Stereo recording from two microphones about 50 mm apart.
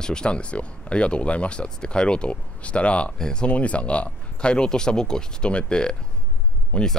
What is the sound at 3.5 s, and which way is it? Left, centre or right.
Speech, left.